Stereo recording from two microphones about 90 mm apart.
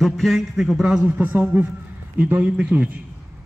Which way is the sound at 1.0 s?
20° right (ahead or behind).